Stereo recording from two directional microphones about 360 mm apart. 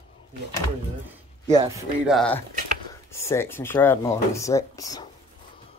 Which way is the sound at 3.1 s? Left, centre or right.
Centre.